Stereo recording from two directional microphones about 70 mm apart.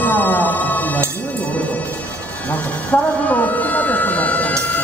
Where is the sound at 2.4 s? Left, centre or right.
Left.